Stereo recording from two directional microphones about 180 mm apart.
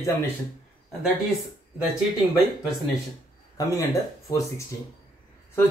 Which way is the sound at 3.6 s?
20° left (ahead or behind).